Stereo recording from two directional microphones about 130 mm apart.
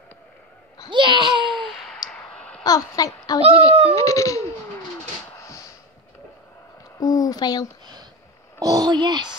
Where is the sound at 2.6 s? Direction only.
30° left (ahead or behind).